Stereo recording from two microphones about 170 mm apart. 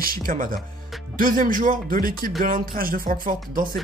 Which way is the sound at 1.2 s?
55° right (ahead or behind).